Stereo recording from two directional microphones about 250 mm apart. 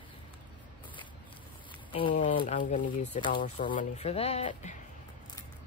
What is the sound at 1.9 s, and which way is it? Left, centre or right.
Speech, centre.